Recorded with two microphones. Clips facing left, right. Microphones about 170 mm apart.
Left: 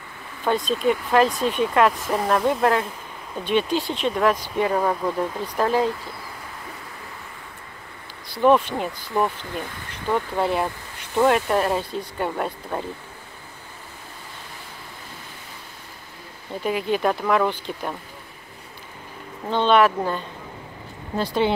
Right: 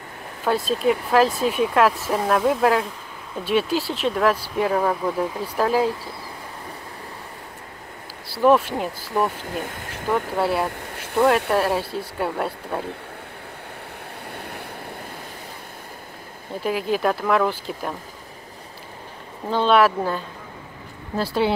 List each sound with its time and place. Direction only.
0.5 s speech: 5° right (ahead or behind)
8.4 s speech: 5° right (ahead or behind)
9.4 s speech: 45° right (ahead or behind)
9.8 s speech: 5° right (ahead or behind)
14.3 s waves: 65° right (ahead or behind)
16.6 s speech: centre (ahead or behind)
19.5 s speech: 5° right (ahead or behind)